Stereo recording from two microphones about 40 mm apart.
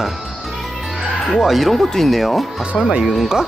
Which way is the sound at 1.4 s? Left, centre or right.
Centre.